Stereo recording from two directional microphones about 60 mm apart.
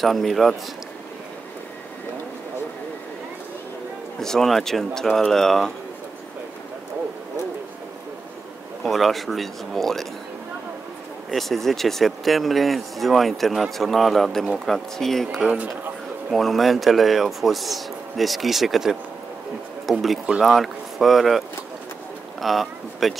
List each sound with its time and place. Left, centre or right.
0.0 s speech: centre
4.2 s speech: centre
8.8 s speech: centre
11.2 s speech: centre
15.4 s speech: right
16.3 s speech: centre